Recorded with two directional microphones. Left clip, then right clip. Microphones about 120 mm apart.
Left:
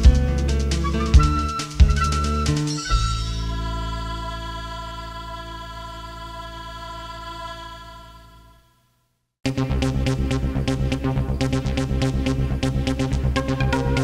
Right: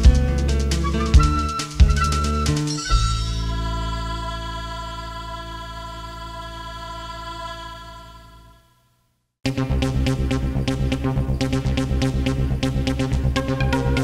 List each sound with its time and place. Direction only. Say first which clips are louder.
0.0 s music: right 1 dB; 30° left (ahead or behind)
9.4 s music: even; 30° left (ahead or behind)